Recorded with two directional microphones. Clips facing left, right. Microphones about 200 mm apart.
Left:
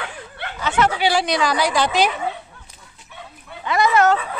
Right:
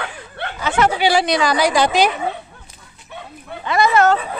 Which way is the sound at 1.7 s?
10° right (ahead or behind).